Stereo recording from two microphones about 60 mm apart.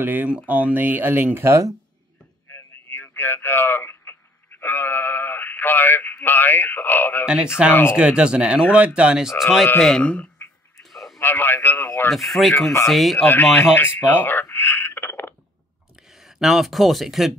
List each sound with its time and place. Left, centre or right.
0.0 s speech: right
1.5 s speech: right
2.5 s a sound: left
7.6 s speech: centre
9.8 s speech: centre
10.8 s radio: centre
11.1 s a man's voice: left
12.1 s speech: centre
13.3 s a man's voice: left
16.1 s speech: centre